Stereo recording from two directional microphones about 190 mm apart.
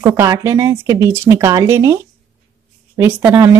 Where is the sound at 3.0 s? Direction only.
10° right (ahead or behind).